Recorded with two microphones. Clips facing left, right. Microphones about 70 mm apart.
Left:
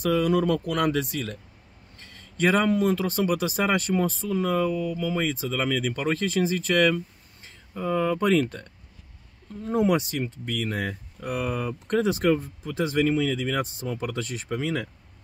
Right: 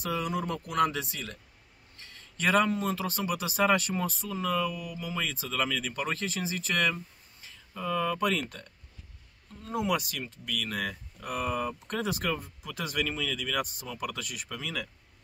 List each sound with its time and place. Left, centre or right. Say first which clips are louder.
0.3 s speech: left 9 dB; left